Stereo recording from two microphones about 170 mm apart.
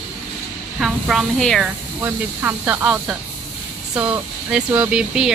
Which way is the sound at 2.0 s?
15° right (ahead or behind).